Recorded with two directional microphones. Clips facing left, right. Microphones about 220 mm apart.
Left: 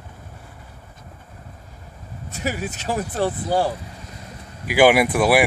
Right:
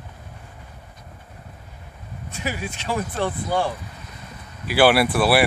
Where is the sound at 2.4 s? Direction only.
40° left (ahead or behind).